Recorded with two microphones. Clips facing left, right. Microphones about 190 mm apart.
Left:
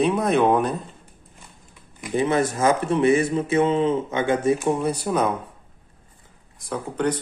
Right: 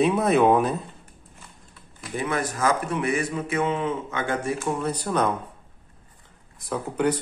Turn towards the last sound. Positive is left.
turn(degrees=-5)  # may be behind; listen again after turning